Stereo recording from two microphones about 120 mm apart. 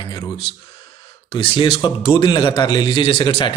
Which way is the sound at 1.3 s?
50° left (ahead or behind).